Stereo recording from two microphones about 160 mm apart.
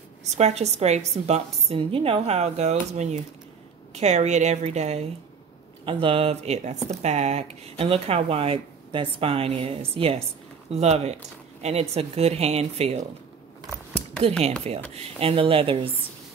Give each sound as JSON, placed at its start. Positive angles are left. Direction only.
{"t": 0.4, "sound": "a woman's voice", "side_deg": -40}
{"t": 14.7, "sound": "speech", "side_deg": -40}